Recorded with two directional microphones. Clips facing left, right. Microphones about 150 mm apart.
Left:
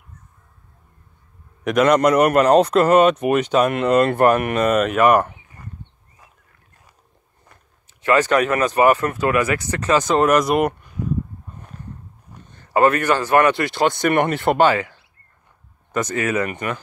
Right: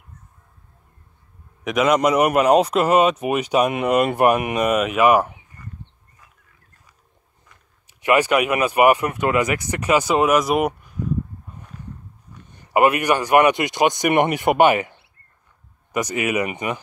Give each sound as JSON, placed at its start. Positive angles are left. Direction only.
{"t": 1.6, "sound": "a man's voice", "side_deg": 0}
{"t": 7.8, "sound": "a man's voice", "side_deg": -15}
{"t": 12.4, "sound": "a man's voice", "side_deg": -15}